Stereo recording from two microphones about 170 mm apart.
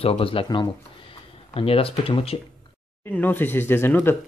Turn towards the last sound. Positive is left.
turn(degrees=15)  # may be behind; listen again after turning